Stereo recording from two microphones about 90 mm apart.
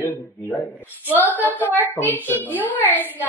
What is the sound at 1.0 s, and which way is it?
Speech, 20° left (ahead or behind).